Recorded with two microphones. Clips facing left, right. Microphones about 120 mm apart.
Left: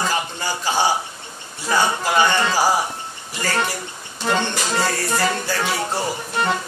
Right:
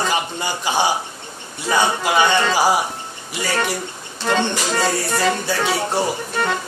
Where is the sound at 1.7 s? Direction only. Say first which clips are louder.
Right 1 dB; 15° right (ahead or behind).